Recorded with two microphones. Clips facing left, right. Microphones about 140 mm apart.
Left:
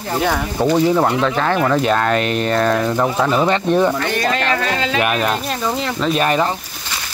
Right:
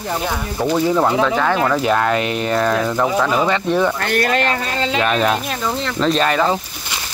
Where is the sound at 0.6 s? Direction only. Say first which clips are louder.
Left 3 dB; 5° left (ahead or behind).